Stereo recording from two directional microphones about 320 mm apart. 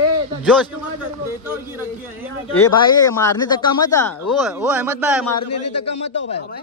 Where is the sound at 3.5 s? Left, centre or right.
Centre.